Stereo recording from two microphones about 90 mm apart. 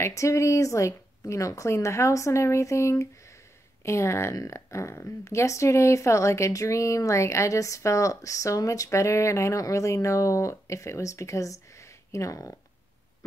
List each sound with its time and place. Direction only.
0.0 s speech: 35° left (ahead or behind)